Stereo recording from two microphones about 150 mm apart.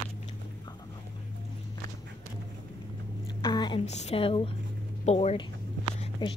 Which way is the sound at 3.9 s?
45° left (ahead or behind).